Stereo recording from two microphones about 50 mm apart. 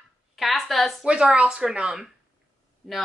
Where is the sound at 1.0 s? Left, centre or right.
Centre.